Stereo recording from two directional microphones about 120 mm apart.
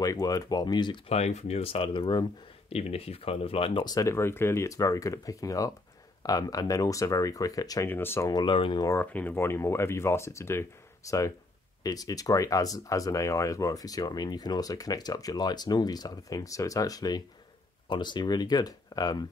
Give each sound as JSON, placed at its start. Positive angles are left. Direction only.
{"t": 0.0, "sound": "speech", "side_deg": 30}
{"t": 1.0, "sound": "speech", "side_deg": 65}
{"t": 2.7, "sound": "speech", "side_deg": 55}
{"t": 3.8, "sound": "speech", "side_deg": 30}
{"t": 7.9, "sound": "speech", "side_deg": 20}
{"t": 8.3, "sound": "speech", "side_deg": 40}
{"t": 8.8, "sound": "speech", "side_deg": 15}